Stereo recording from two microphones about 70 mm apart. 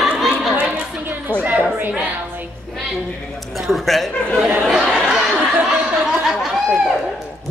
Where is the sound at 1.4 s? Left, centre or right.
Right.